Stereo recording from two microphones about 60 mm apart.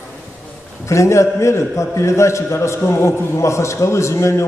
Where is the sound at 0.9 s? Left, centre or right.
Left.